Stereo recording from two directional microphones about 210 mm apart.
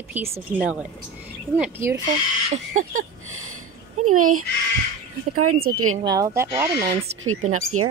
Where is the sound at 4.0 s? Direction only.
90° right.